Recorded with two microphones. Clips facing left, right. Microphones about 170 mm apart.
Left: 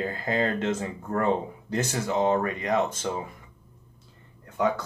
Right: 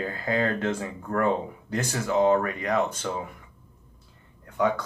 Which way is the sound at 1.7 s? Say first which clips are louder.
Right 1 dB; 25° left (ahead or behind).